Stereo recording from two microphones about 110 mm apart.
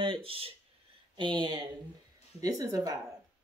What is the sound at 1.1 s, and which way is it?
Speech, 45° right (ahead or behind).